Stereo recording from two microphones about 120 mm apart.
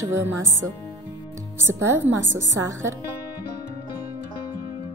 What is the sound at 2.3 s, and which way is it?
Speech, 25° right (ahead or behind).